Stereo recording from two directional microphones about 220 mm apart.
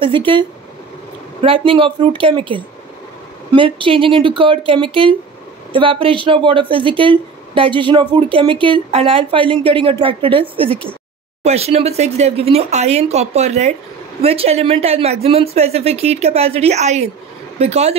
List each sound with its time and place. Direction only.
0.0 s speech: 25° right (ahead or behind)